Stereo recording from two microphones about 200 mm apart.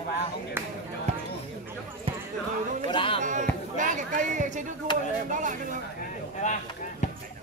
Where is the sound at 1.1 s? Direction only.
35° right (ahead or behind).